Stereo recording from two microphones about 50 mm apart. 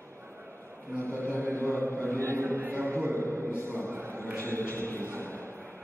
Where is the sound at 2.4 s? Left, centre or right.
Right.